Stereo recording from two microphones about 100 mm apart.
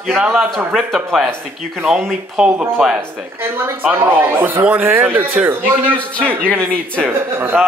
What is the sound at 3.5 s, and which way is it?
Speech, 20° right (ahead or behind).